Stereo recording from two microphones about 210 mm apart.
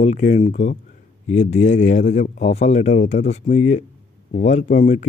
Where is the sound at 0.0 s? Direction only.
35° left (ahead or behind).